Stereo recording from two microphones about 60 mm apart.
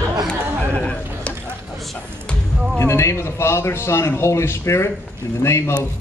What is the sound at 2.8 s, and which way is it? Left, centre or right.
A man's voice, left.